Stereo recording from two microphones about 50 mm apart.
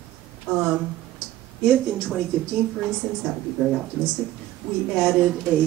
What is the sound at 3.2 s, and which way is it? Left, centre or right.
Speech, centre.